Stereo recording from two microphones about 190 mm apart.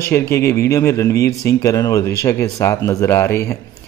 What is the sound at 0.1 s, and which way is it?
A man's voice, 15° left (ahead or behind).